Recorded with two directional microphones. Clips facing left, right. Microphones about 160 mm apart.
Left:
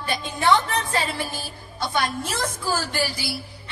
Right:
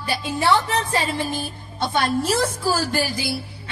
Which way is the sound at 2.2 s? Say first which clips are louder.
Right 6 dB; 30° right (ahead or behind).